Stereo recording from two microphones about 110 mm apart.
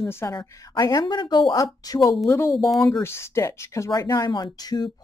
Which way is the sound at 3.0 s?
25° left (ahead or behind).